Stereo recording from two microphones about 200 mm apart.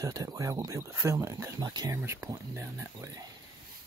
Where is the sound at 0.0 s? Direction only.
15° right (ahead or behind).